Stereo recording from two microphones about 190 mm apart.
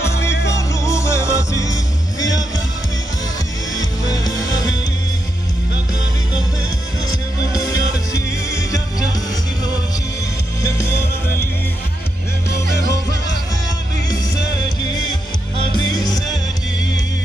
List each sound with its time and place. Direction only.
0.5 s music: 15° left (ahead or behind)
4.1 s music: 20° left (ahead or behind)
7.1 s music: 20° left (ahead or behind)
10.6 s music: 15° left (ahead or behind)
15.5 s music: 20° left (ahead or behind)